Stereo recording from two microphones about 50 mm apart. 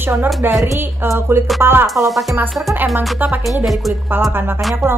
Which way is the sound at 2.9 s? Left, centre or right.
Right.